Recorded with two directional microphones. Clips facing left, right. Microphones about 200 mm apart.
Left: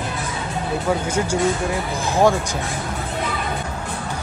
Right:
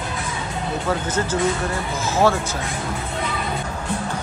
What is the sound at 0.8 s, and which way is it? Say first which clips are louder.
Speech: left 2 dB; 10° left (ahead or behind).